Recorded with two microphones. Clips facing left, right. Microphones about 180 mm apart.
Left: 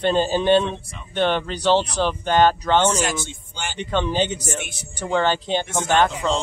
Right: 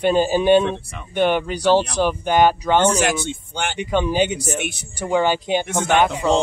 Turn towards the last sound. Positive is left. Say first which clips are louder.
# right 2 dB
turn(degrees=-10)  # may be behind; listen again after turning